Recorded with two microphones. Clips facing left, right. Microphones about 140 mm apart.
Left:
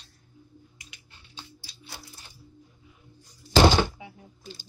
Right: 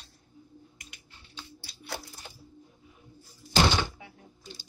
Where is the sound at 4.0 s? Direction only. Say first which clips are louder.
Left 4 dB; 15° left (ahead or behind).